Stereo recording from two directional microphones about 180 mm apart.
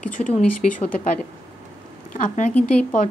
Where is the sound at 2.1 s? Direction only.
45° left (ahead or behind).